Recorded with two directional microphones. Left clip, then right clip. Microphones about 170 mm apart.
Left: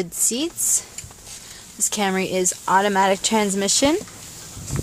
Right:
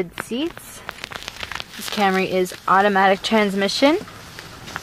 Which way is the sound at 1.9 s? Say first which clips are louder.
Right 4 dB; 15° left (ahead or behind).